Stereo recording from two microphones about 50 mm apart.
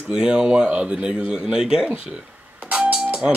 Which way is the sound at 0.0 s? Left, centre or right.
Centre.